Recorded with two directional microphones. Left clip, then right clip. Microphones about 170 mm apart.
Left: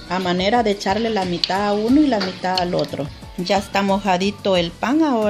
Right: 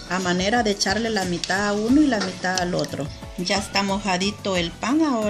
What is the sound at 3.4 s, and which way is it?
A woman's voice, 40° left (ahead or behind).